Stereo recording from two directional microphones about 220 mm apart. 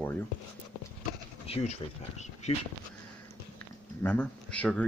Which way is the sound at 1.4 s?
30° left (ahead or behind).